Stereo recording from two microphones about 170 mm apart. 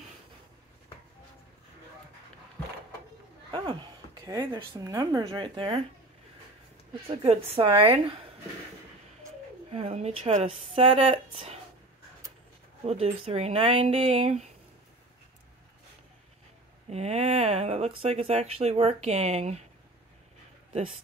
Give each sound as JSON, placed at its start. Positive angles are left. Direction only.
{"t": 3.5, "sound": "speech", "side_deg": -25}
{"t": 7.1, "sound": "speech", "side_deg": -35}
{"t": 9.7, "sound": "speech", "side_deg": -40}
{"t": 12.8, "sound": "speech", "side_deg": -35}
{"t": 16.9, "sound": "speech", "side_deg": -40}